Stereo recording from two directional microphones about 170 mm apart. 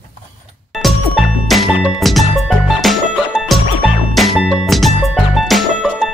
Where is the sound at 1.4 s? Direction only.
Centre (ahead or behind).